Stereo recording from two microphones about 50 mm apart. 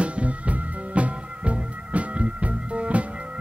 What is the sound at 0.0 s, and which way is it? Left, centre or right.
Music, right.